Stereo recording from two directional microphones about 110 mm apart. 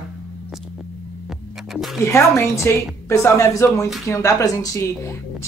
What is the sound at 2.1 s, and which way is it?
A woman's voice, 25° left (ahead or behind).